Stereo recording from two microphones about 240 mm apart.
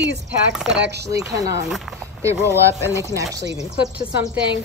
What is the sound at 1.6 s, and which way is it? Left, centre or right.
Speech, centre.